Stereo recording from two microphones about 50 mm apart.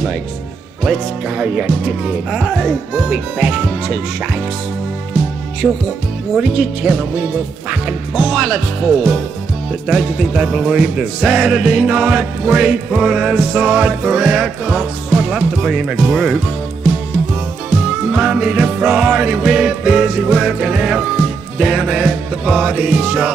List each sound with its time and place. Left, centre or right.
0.8 s music: centre
6.3 s music: centre
7.7 s speech: centre
9.7 s music: centre
17.6 s music: centre